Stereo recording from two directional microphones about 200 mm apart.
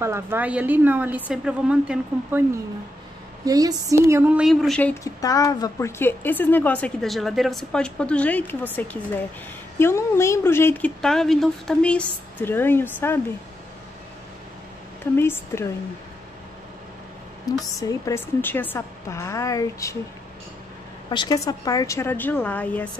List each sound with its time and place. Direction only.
0.0 s a woman's voice: 10° right (ahead or behind)
3.4 s a woman's voice: 15° right (ahead or behind)
4.5 s speech: centre (ahead or behind)
5.0 s a woman's voice: 15° left (ahead or behind)
15.1 s a woman's voice: 10° left (ahead or behind)
17.5 s a woman's voice: 15° left (ahead or behind)
21.1 s a woman's voice: 20° left (ahead or behind)